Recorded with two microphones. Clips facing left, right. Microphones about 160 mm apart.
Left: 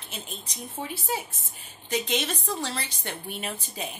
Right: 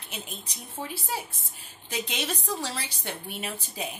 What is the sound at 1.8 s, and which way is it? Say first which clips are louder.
A woman's voice: left 4 dB; 10° right (ahead or behind).